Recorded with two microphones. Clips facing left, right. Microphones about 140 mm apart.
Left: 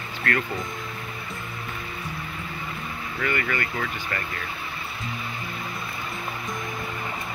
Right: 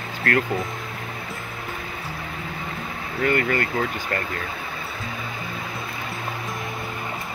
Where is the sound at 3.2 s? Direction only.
40° right (ahead or behind).